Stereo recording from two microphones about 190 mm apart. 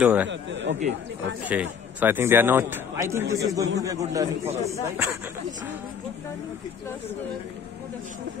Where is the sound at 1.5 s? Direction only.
10° right (ahead or behind).